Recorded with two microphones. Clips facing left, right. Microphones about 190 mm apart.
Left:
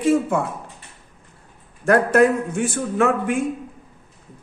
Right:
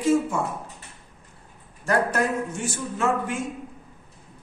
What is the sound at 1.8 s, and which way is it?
Speech, 60° left (ahead or behind).